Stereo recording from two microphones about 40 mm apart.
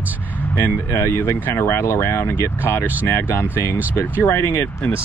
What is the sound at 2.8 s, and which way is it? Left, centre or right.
Speech, right.